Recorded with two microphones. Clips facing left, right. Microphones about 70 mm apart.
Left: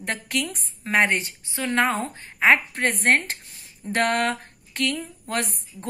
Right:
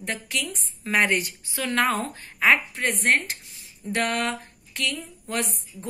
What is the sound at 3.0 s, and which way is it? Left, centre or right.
Speech, left.